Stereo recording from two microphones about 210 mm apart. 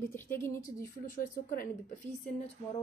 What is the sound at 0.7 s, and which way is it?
A woman's voice, 40° left (ahead or behind).